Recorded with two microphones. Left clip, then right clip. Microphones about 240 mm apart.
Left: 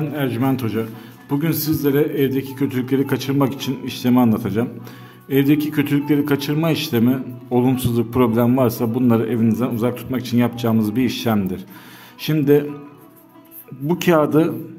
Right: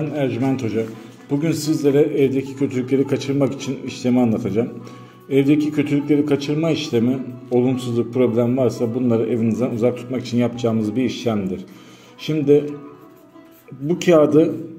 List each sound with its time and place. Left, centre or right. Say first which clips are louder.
0.0 s a man's voice: even; left
13.8 s a man's voice: right 2 dB; left